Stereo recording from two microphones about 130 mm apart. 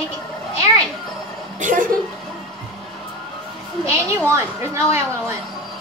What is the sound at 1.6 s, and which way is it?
Speech, 85° right.